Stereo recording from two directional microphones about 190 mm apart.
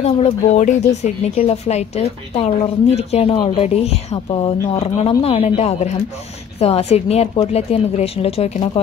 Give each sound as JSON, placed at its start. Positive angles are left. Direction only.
{"t": 0.0, "sound": "speech", "side_deg": 35}